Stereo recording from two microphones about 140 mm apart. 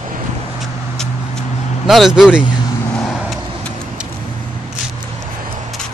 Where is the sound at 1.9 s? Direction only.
Centre (ahead or behind).